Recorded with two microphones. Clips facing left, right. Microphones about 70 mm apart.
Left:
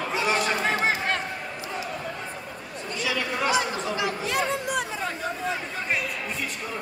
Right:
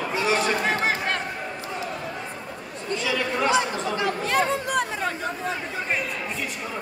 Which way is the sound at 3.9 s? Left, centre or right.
Right.